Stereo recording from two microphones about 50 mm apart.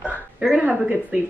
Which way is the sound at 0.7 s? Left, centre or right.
Right.